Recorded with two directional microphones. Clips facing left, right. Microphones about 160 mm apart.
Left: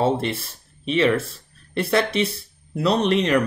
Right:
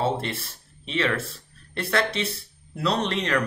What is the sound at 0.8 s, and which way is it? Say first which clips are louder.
Speech: left 7 dB; 15° left (ahead or behind).